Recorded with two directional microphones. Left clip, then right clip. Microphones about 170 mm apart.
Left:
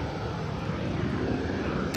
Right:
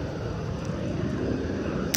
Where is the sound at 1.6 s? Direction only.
25° left (ahead or behind).